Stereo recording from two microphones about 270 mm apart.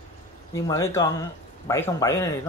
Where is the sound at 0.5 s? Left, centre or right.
Centre.